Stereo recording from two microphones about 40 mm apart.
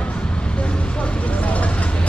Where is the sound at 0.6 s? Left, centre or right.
Left.